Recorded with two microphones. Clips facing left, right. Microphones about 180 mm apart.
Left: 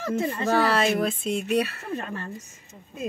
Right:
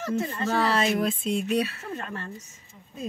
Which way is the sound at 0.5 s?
65° left (ahead or behind).